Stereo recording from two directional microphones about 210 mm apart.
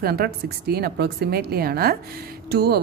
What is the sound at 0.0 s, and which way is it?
A woman's voice, 45° right (ahead or behind).